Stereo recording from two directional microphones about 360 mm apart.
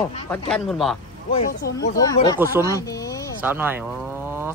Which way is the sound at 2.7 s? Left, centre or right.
Centre.